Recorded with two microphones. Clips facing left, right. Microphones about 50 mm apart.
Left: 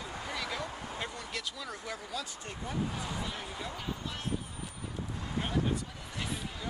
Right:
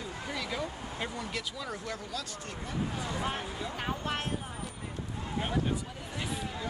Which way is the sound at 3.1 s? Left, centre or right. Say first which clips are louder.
Right 4 dB; right.